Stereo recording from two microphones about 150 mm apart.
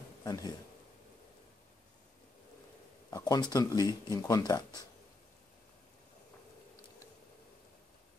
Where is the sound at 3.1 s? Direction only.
25° left (ahead or behind).